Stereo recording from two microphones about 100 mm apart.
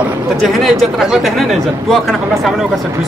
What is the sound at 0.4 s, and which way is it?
Speech, centre (ahead or behind).